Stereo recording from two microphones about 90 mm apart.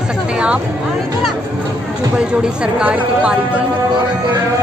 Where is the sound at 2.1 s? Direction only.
10° right (ahead or behind).